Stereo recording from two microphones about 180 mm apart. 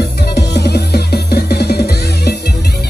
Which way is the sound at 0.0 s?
65° left (ahead or behind).